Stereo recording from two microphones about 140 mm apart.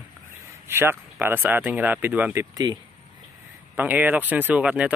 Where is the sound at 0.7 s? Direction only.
15° right (ahead or behind).